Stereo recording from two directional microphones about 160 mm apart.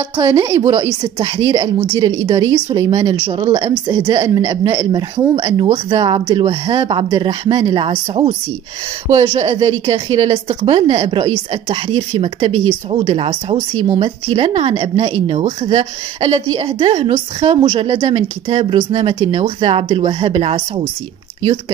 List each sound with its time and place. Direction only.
0.2 s speech: 20° right (ahead or behind)
1.2 s a woman's voice: 30° right (ahead or behind)
3.3 s a woman's voice: 40° right (ahead or behind)
3.8 s a woman's voice: 25° right (ahead or behind)